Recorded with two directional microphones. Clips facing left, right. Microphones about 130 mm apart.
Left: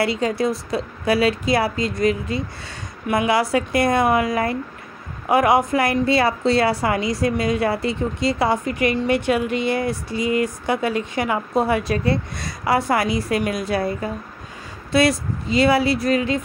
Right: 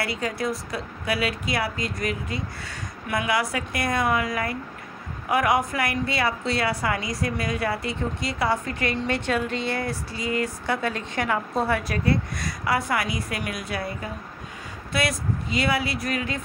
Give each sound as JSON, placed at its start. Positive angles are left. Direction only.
{"t": 0.0, "sound": "speech", "side_deg": 25}
{"t": 8.6, "sound": "speech", "side_deg": 15}